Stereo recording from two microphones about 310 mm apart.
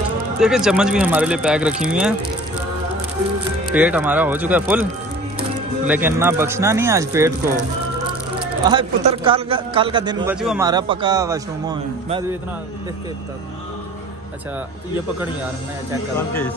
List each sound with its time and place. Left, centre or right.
0.4 s speech: centre
3.7 s speech: centre
5.9 s a man's voice: centre
8.6 s a man's voice: centre
10.4 s speech: centre
10.7 s a man's voice: centre